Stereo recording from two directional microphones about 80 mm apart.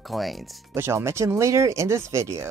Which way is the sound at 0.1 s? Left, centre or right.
Centre.